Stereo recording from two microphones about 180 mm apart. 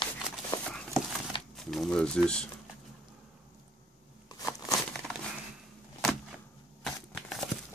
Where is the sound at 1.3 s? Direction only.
30° left (ahead or behind).